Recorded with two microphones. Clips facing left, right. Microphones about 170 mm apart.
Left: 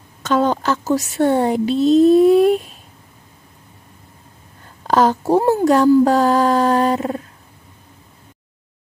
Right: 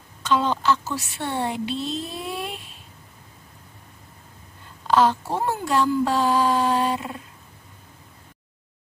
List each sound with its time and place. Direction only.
0.2 s a woman's voice: 45° left (ahead or behind)
4.8 s a woman's voice: 45° left (ahead or behind)